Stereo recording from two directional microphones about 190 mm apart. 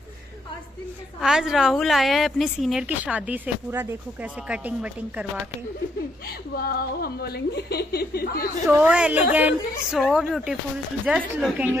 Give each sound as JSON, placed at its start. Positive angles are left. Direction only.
{"t": 1.2, "sound": "a woman's voice", "side_deg": -5}
{"t": 6.5, "sound": "a woman's voice", "side_deg": 55}
{"t": 8.6, "sound": "a woman's voice", "side_deg": -10}